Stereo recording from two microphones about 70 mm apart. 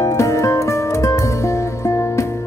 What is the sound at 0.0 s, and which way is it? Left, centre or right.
Music, left.